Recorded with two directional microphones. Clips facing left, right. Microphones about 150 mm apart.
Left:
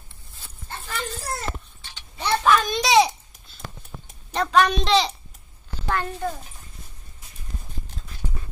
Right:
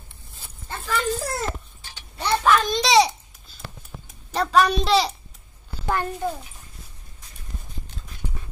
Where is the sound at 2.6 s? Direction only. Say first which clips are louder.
Even; 5° left (ahead or behind).